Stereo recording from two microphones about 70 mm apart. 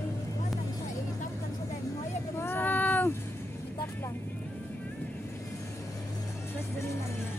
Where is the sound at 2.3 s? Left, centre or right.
Left.